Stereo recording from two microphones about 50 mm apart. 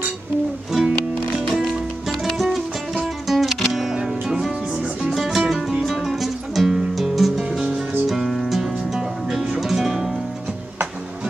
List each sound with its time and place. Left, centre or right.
0.7 s music: centre
7.4 s music: centre
8.1 s music: centre